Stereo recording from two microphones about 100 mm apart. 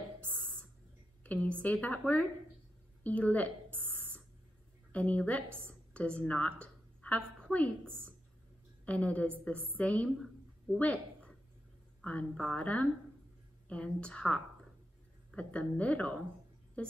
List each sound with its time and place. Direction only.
1.2 s a woman's voice: 15° left (ahead or behind)
4.9 s a woman's voice: 15° left (ahead or behind)
6.6 s a sound: 10° left (ahead or behind)
8.8 s a woman's voice: 10° left (ahead or behind)
10.1 s a sound: centre (ahead or behind)
10.8 s a woman's voice: 10° left (ahead or behind)
15.8 s a woman's voice: 15° left (ahead or behind)